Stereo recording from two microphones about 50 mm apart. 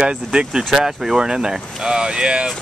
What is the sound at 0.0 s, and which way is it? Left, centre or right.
Speech, centre.